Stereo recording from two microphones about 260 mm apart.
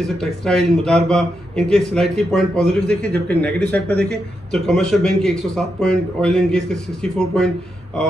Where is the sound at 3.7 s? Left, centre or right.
Right.